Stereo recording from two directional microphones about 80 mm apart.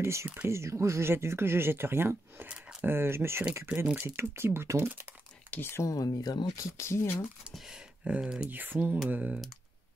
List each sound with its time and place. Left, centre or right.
0.0 s speech: right
3.8 s speech: right
5.5 s speech: left
7.5 s speech: centre
8.5 s speech: right